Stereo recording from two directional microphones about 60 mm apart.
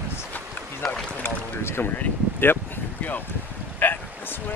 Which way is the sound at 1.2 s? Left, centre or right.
Left.